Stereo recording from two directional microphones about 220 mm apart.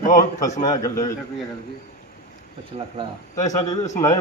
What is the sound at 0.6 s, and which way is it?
Speech, 15° left (ahead or behind).